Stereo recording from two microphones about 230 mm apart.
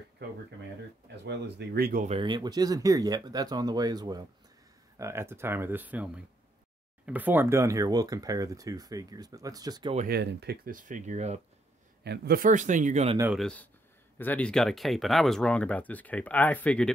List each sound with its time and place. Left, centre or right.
1.2 s speech: right
2.0 s speech: right
9.9 s speech: right
12.0 s speech: right
13.2 s speech: centre